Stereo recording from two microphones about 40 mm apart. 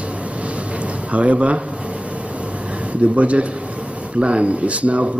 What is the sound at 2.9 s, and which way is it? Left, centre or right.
Speech, right.